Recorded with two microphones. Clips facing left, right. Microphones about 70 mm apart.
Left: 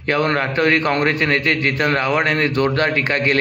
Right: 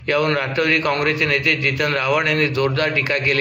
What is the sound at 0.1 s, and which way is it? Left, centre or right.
A man's voice, left.